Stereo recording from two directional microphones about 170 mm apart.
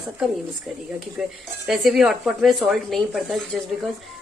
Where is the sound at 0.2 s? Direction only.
Centre (ahead or behind).